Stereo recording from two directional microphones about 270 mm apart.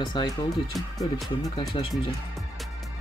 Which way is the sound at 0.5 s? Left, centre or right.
Centre.